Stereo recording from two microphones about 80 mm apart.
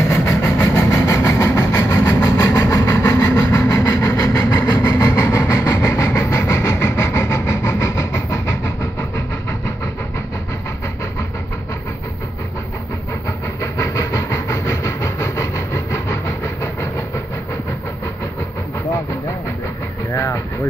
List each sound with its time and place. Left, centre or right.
0.0 s vehicle: left
13.6 s vehicle: left